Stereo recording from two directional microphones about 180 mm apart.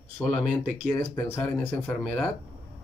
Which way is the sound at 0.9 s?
15° left (ahead or behind).